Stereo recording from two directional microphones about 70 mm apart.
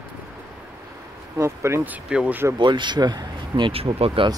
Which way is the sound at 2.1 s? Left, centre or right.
Centre.